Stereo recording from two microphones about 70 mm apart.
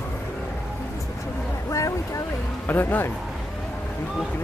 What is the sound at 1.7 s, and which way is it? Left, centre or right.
Boat, left.